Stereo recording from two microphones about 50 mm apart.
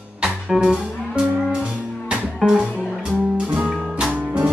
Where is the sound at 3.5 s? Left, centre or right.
Right.